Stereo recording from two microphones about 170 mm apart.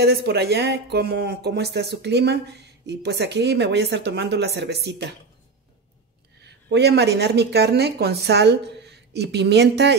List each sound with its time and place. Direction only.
0.0 s speech: 75° right (ahead or behind)
6.4 s speech: 75° right (ahead or behind)